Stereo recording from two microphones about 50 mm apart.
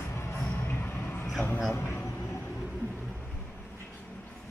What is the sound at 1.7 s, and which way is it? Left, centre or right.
Speech, left.